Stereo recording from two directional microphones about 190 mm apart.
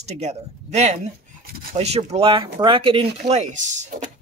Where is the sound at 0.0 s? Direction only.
35° right (ahead or behind).